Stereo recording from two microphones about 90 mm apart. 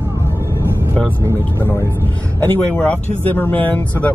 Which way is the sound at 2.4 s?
15° left (ahead or behind).